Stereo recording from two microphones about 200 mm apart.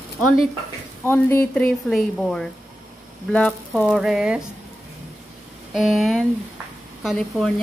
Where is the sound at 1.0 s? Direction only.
10° left (ahead or behind).